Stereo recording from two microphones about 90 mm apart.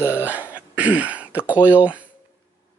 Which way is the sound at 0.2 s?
20° right (ahead or behind).